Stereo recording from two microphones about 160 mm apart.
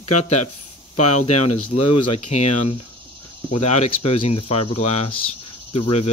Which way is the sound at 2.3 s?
40° left (ahead or behind).